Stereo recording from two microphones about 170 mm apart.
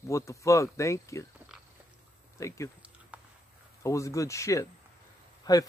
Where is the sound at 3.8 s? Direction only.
20° left (ahead or behind).